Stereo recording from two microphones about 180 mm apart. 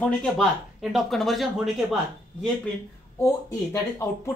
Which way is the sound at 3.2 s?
15° left (ahead or behind).